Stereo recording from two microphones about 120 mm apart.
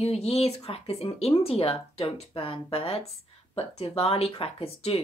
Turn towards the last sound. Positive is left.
turn(degrees=55)  # may be behind; listen again after turning